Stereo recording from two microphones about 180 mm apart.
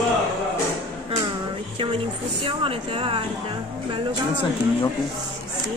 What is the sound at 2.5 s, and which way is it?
Speech, 30° right (ahead or behind).